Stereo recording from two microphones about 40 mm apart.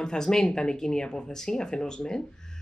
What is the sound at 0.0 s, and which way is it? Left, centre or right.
Speech, centre.